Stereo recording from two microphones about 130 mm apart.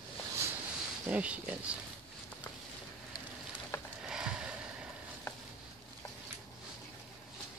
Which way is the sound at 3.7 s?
20° left (ahead or behind).